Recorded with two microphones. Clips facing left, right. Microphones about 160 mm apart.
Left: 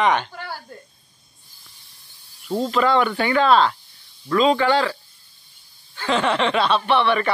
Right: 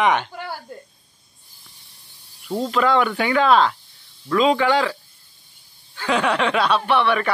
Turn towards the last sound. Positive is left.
turn(degrees=-5)  # may be behind; listen again after turning